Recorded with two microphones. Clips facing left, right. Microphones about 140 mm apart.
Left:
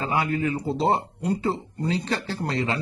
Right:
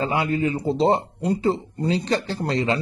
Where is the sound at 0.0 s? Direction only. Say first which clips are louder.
Right 2 dB; 25° right (ahead or behind).